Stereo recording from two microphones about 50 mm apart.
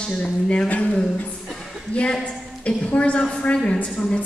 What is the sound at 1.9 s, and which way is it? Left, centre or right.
A woman's voice, left.